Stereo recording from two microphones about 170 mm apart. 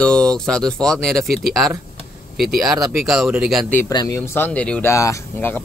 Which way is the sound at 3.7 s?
20° left (ahead or behind).